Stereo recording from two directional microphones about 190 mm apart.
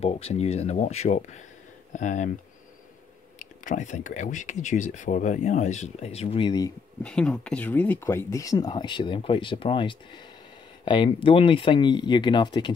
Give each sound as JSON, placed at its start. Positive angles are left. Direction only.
{"t": 0.0, "sound": "speech", "side_deg": 30}
{"t": 3.3, "sound": "speech", "side_deg": 40}
{"t": 7.0, "sound": "speech", "side_deg": 5}